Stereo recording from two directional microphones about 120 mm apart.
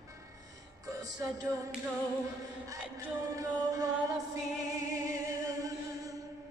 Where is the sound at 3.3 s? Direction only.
30° right (ahead or behind).